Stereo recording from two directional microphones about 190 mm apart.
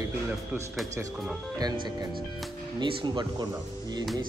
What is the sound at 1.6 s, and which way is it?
Speech, 20° right (ahead or behind).